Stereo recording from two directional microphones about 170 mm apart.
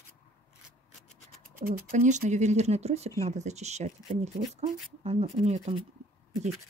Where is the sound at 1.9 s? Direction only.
45° right (ahead or behind).